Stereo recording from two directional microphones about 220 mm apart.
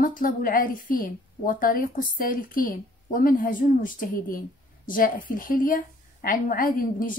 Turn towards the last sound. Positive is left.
turn(degrees=40)  # may be behind; listen again after turning